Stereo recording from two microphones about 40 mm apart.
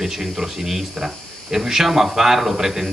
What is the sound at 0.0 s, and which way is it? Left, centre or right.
A man's voice, centre.